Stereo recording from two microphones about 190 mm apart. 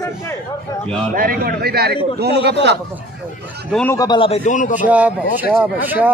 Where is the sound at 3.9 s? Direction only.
20° left (ahead or behind).